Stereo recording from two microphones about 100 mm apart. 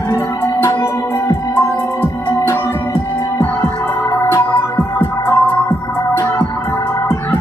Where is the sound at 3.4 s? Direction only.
25° left (ahead or behind).